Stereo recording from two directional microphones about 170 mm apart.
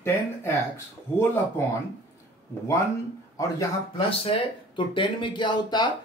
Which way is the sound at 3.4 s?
20° left (ahead or behind).